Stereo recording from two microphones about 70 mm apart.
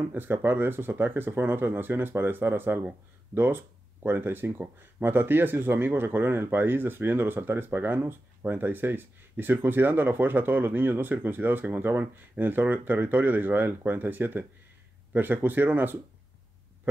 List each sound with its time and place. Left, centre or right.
0.1 s speech: right